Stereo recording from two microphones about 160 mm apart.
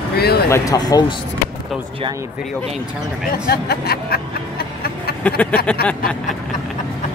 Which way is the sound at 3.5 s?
75° left (ahead or behind).